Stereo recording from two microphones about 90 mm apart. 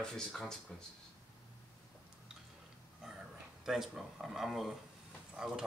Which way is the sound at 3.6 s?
5° right (ahead or behind).